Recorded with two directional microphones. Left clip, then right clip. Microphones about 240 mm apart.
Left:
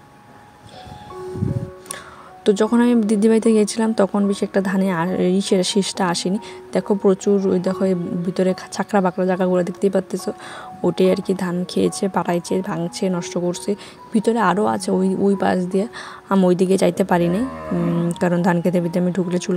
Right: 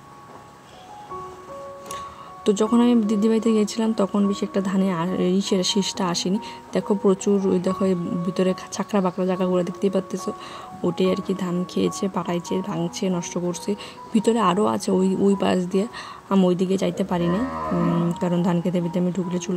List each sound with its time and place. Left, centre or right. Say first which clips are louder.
2.4 s speech: left 3 dB; centre